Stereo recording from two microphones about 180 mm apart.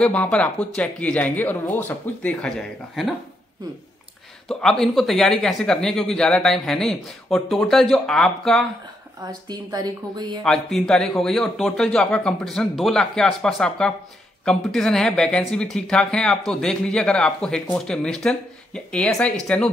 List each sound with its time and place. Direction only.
0.0 s speech: 5° left (ahead or behind)
4.5 s speech: 5° left (ahead or behind)
9.3 s speech: 20° right (ahead or behind)
10.4 s speech: centre (ahead or behind)